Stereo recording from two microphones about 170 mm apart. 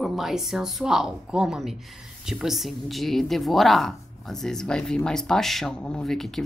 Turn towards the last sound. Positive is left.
turn(degrees=0)  # may be behind; listen again after turning